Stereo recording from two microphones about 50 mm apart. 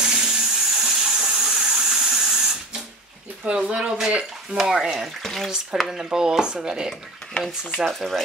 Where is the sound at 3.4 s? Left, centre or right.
Right; by 5.1 s centre.